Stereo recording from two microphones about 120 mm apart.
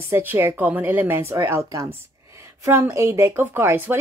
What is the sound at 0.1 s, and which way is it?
Speech, 20° right (ahead or behind).